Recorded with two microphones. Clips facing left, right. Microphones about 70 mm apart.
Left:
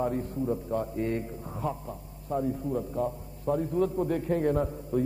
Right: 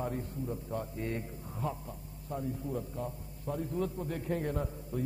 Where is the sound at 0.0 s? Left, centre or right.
Left.